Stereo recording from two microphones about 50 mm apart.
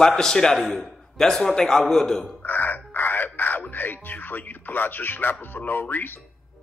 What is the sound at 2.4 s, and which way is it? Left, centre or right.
Music, left.